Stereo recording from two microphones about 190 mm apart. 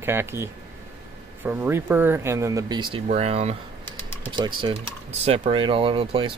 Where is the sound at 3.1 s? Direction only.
35° right (ahead or behind).